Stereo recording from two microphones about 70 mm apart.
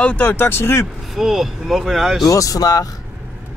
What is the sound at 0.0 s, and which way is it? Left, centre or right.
Speech, left.